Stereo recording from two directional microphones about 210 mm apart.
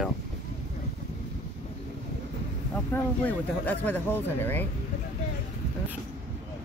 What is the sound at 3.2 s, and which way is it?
Speech, 10° left (ahead or behind).